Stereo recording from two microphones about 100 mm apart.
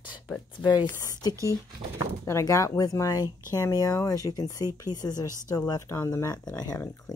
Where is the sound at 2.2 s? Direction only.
30° left (ahead or behind).